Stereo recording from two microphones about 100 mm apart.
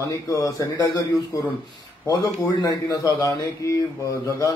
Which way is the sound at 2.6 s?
40° left (ahead or behind).